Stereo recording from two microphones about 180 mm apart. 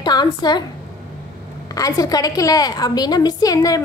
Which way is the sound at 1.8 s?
20° left (ahead or behind).